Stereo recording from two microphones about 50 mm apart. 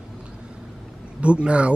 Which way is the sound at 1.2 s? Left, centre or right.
Right.